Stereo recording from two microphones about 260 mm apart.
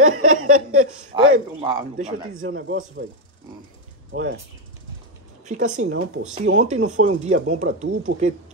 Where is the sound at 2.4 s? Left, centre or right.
Right.